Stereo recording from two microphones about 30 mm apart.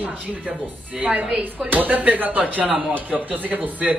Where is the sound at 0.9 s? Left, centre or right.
Right.